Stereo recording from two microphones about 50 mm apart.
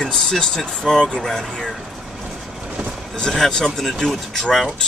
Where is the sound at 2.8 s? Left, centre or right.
Centre.